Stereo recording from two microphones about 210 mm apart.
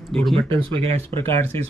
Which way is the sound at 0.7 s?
25° right (ahead or behind).